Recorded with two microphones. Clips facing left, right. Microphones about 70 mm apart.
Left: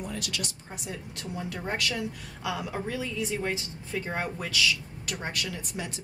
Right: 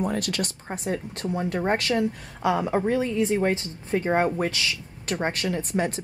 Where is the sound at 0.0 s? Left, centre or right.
Right.